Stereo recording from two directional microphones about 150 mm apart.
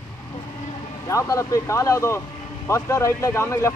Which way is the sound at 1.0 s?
20° left (ahead or behind).